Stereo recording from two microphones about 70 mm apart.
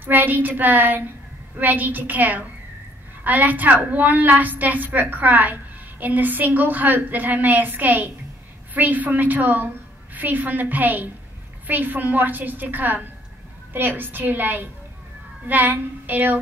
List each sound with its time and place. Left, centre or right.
0.0 s a woman's voice: right